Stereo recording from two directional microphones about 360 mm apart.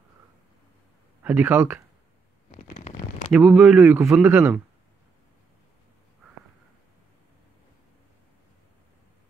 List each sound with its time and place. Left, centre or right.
1.2 s speech: centre
2.5 s a sound: centre
3.3 s speech: centre